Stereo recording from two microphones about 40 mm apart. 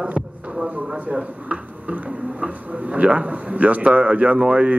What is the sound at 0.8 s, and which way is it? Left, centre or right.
Speech, right.